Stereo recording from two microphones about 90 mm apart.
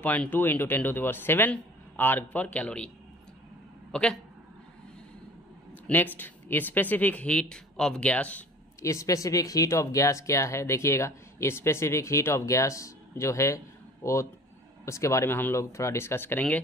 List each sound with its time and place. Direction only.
0.0 s a man's voice: 20° left (ahead or behind)
3.9 s speech: 10° left (ahead or behind)
5.9 s speech: 20° left (ahead or behind)
8.8 s a man's voice: 35° left (ahead or behind); by 16.6 s 15° left (ahead or behind)